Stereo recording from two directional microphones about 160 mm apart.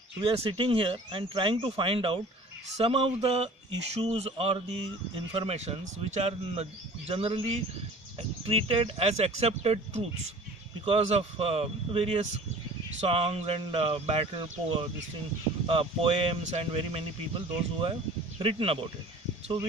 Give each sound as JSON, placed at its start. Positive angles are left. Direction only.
{"t": 0.2, "sound": "speech", "side_deg": -35}